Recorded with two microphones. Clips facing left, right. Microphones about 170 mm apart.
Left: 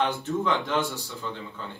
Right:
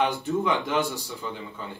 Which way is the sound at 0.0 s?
15° right (ahead or behind).